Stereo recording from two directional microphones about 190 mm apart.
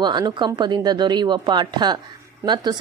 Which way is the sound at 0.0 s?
25° right (ahead or behind).